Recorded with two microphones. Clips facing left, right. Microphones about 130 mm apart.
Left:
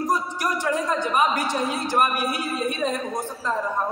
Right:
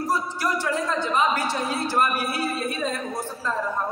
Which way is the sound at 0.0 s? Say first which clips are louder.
Left 1 dB; 15° left (ahead or behind).